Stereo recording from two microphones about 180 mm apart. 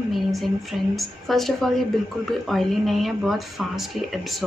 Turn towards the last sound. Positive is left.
turn(degrees=0)  # may be behind; listen again after turning